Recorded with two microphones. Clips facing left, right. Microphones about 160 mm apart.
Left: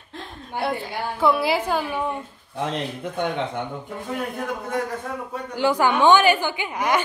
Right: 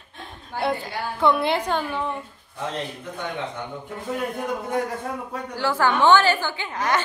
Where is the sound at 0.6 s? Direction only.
Centre (ahead or behind).